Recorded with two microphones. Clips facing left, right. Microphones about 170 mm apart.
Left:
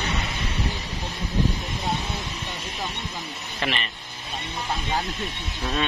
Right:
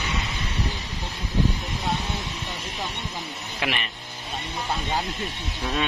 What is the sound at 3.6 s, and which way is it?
Speech, 10° right (ahead or behind).